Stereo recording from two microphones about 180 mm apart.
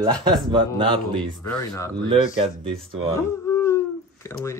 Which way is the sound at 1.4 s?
15° left (ahead or behind).